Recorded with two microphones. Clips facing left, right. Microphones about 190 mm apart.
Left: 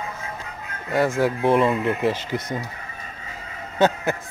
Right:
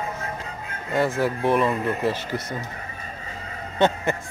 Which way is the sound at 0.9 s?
10° left (ahead or behind).